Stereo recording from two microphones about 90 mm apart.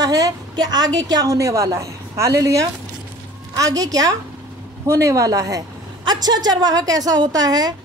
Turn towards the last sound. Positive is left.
turn(degrees=-45)  # may be behind; listen again after turning